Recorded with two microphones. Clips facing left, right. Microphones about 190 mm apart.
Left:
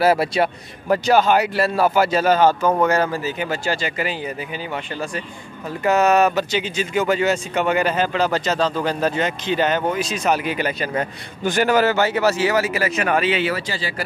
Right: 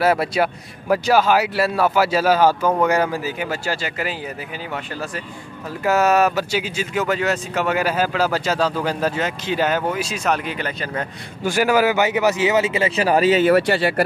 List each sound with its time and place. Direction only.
0.0 s a man's voice: centre (ahead or behind)
5.9 s speech: 5° right (ahead or behind)
10.2 s speech: 5° left (ahead or behind)
11.4 s speech: 5° right (ahead or behind); by 13.6 s 45° right (ahead or behind)
13.6 s speech: 65° right (ahead or behind)